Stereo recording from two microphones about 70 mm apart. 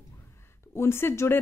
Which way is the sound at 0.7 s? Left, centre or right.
Left.